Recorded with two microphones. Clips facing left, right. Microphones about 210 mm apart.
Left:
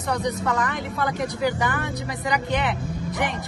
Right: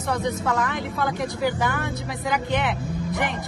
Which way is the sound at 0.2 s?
Centre (ahead or behind).